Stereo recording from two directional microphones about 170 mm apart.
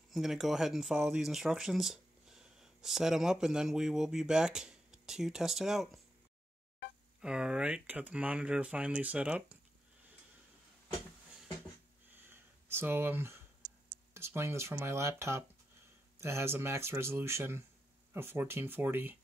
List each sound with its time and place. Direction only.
0.1 s speech: centre (ahead or behind)
7.2 s speech: 5° right (ahead or behind)
12.2 s a sound: 15° right (ahead or behind)
14.1 s speech: 15° right (ahead or behind)